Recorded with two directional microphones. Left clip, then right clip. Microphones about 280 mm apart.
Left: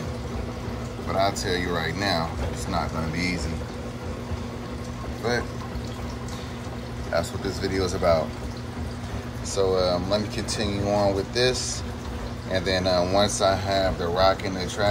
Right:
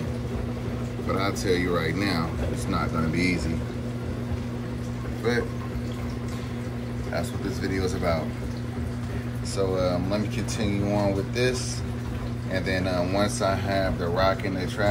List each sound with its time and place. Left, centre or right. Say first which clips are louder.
1.1 s speech: left 2 dB; centre
7.2 s speech: left 4 dB; centre
9.6 s speech: left 3 dB; centre